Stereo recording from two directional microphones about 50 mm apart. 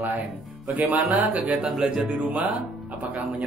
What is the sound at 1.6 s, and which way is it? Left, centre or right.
Speech, centre.